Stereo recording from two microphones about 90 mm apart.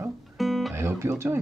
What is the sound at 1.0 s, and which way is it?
Speech, 30° right (ahead or behind).